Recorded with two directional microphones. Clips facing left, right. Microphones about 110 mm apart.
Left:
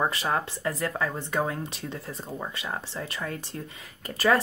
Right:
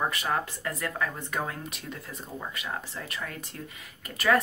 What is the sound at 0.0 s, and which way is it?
Speech, 30° left (ahead or behind).